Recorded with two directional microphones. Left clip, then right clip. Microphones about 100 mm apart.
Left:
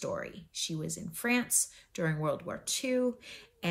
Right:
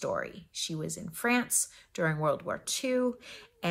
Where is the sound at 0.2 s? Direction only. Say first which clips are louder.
Right 2 dB; 40° right (ahead or behind).